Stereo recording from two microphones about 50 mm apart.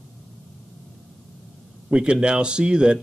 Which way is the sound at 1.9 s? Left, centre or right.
Centre.